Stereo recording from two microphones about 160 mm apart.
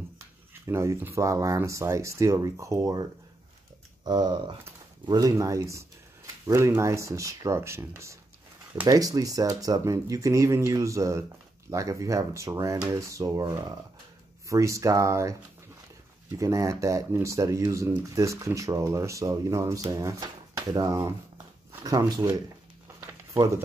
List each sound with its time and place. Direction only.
0.7 s speech: 15° right (ahead or behind)